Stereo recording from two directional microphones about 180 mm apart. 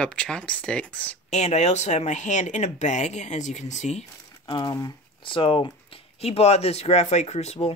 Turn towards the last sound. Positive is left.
turn(degrees=35)  # may be behind; listen again after turning